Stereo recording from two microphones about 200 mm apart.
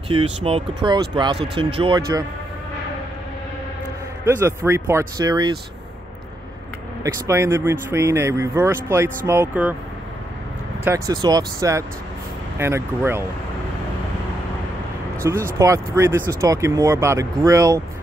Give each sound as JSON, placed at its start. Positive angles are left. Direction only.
{"t": 0.1, "sound": "speech", "side_deg": -30}
{"t": 4.2, "sound": "speech", "side_deg": -15}
{"t": 7.0, "sound": "speech", "side_deg": -15}
{"t": 10.8, "sound": "speech", "side_deg": -15}
{"t": 15.2, "sound": "speech", "side_deg": -15}